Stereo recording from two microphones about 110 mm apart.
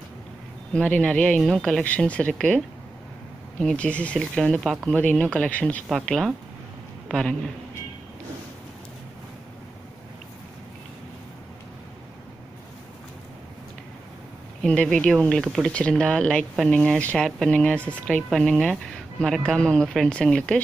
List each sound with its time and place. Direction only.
0.7 s speech: 10° left (ahead or behind)
5.9 s speech: centre (ahead or behind)
14.6 s speech: 5° left (ahead or behind)